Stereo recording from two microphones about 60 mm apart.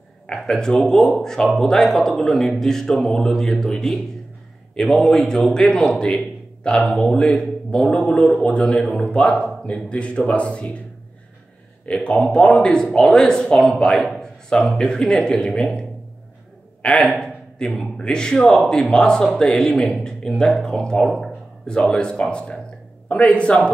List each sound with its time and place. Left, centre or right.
0.5 s a man's voice: centre
7.2 s a man's voice: centre
11.8 s a man's voice: centre
14.2 s a sound: centre
14.8 s a man's voice: centre
16.8 s speech: left
17.1 s a sound: centre
17.6 s a man's voice: centre